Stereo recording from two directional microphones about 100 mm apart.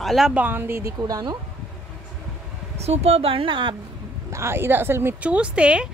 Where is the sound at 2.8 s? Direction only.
90° right; by 3.7 s 55° right (ahead or behind).